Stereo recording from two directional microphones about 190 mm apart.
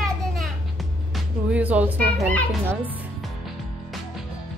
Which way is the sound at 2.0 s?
5° left (ahead or behind).